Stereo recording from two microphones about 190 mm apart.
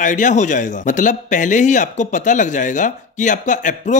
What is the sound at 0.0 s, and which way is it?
Speech, 40° left (ahead or behind).